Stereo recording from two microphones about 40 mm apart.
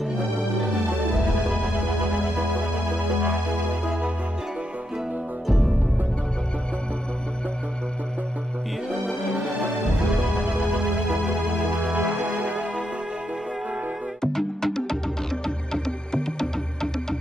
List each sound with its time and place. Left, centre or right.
1.5 s music: right
3.8 s music: right
5.5 s music: centre
8.8 s music: right
12.1 s music: right
14.2 s music: centre